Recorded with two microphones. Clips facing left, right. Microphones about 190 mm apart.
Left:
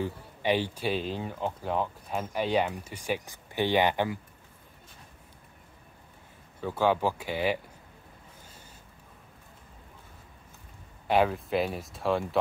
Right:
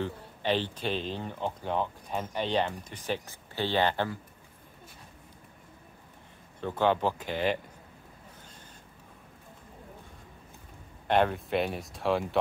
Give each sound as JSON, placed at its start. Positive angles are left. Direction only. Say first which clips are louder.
{"t": 0.0, "sound": "speech", "louder": "left 2 dB", "side_deg": 10}
{"t": 6.6, "sound": "speech", "louder": "left 1 dB", "side_deg": 10}
{"t": 11.1, "sound": "speech", "louder": "left 1 dB", "side_deg": 5}